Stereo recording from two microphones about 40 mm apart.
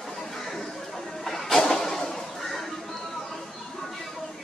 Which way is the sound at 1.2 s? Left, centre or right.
Centre.